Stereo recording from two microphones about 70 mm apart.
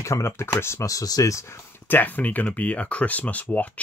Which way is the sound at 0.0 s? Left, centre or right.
Left.